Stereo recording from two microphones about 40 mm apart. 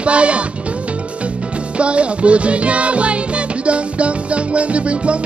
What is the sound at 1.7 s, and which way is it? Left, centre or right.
Music, right.